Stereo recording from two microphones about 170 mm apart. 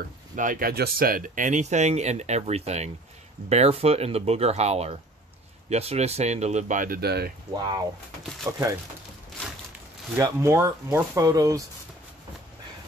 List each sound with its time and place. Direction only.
0.4 s speech: 55° right (ahead or behind)
8.5 s speech: 20° right (ahead or behind)
10.1 s speech: 15° right (ahead or behind)